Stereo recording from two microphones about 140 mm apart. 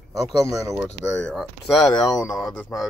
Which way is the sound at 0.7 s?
Centre (ahead or behind).